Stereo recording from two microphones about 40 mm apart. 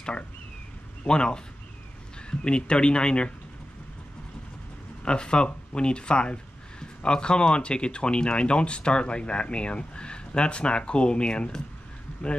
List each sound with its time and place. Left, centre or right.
1.0 s speech: left
2.4 s speech: left
5.0 s speech: left